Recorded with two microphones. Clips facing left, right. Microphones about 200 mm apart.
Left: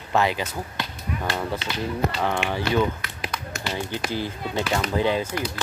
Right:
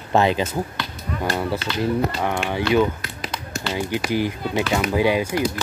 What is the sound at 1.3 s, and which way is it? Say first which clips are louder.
Speech: right 5 dB; 5° right (ahead or behind).